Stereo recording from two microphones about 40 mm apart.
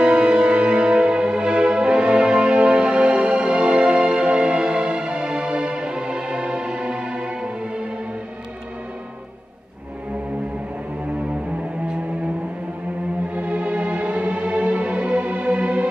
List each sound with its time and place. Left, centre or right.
0.0 s music: right
13.3 s music: right